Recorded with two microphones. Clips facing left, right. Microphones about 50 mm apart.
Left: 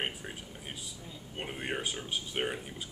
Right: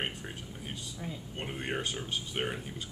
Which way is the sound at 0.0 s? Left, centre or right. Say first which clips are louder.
Even; centre.